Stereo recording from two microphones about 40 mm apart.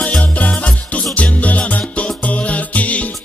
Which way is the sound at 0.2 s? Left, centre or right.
Left.